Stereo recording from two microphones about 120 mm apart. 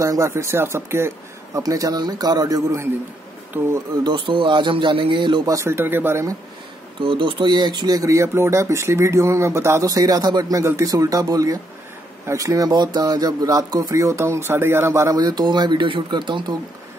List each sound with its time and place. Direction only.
0.0 s speech: 25° right (ahead or behind)
3.6 s speech: 15° right (ahead or behind)
4.0 s a man's voice: 40° right (ahead or behind)
5.5 s speech: 25° right (ahead or behind)
7.0 s speech: 45° right (ahead or behind); by 15.1 s 20° right (ahead or behind)
15.1 s a man's voice: 35° right (ahead or behind)